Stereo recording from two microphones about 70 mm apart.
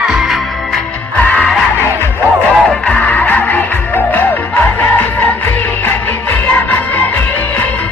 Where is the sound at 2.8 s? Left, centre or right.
Centre.